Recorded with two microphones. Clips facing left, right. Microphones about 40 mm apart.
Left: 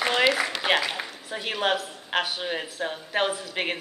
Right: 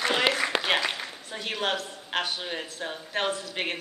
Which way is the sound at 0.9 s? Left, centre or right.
Centre.